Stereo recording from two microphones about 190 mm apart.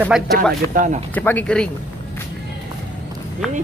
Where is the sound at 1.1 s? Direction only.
10° left (ahead or behind).